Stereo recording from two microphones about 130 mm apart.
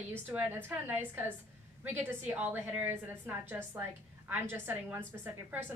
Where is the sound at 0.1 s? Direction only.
15° right (ahead or behind).